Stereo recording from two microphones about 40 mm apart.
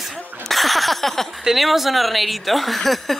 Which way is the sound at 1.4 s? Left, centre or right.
Centre.